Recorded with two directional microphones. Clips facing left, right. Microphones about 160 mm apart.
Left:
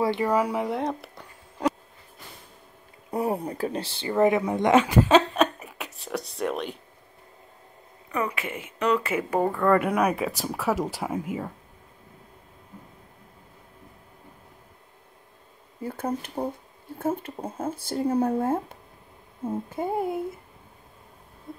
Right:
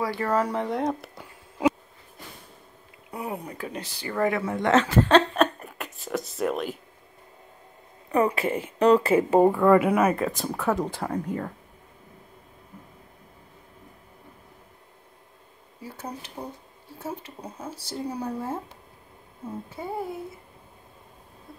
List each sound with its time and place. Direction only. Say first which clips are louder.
0.0 s speech: left 2 dB; 20° left (ahead or behind); by 1.8 s centre (ahead or behind)
3.1 s speech: left 7 dB; 35° left (ahead or behind); by 6.8 s centre (ahead or behind)
8.1 s speech: right 6 dB; 30° right (ahead or behind)
9.4 s speech: right 2 dB; 10° right (ahead or behind); by 11.5 s 5° left (ahead or behind)
15.8 s speech: left 8 dB; 50° left (ahead or behind)
19.8 s speech: left 6 dB; 50° left (ahead or behind)